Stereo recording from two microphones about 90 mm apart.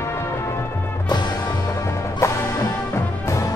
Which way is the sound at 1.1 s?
50° left (ahead or behind).